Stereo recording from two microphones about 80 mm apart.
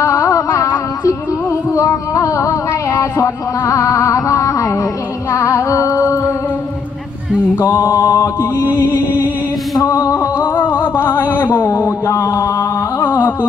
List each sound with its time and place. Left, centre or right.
0.0 s a sound: left
5.3 s music: left
7.5 s mantra: left
9.8 s music: left